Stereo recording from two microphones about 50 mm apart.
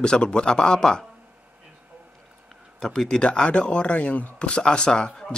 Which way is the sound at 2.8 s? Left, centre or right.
Centre.